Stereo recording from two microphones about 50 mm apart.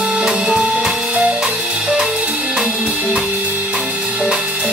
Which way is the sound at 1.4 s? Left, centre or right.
Centre.